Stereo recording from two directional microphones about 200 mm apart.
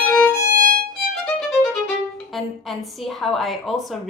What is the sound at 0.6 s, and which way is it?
Violin, 45° right (ahead or behind).